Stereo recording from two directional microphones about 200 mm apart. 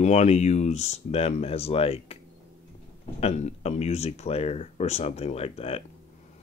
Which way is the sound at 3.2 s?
30° left (ahead or behind).